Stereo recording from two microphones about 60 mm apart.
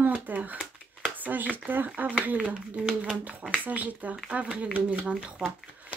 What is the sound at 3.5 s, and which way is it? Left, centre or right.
Speech, right.